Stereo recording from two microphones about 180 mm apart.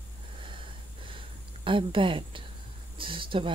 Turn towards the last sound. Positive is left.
turn(degrees=-30)  # may be behind; listen again after turning